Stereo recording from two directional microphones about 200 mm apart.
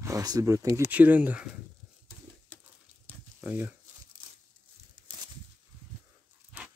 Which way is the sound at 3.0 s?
10° right (ahead or behind).